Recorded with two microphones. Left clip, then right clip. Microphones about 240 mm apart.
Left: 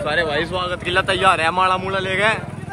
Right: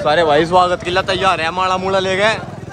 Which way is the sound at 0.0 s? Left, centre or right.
Right.